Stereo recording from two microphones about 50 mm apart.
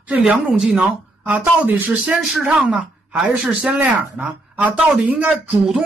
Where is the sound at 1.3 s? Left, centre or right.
Right.